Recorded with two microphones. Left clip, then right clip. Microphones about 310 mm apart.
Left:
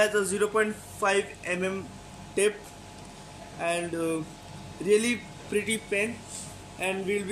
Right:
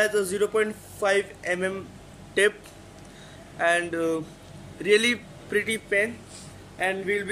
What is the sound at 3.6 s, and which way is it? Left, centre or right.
A man's voice, right.